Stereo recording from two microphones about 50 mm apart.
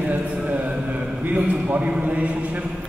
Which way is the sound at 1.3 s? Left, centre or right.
Right.